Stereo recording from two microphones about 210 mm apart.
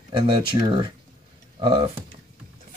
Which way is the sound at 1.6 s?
20° right (ahead or behind).